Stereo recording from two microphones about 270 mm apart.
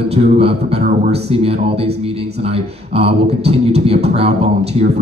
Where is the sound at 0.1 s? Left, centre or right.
Right.